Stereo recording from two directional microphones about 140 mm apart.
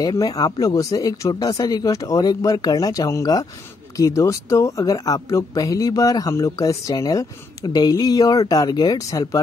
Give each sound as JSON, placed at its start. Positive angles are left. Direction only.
{"t": 0.2, "sound": "speech", "side_deg": 25}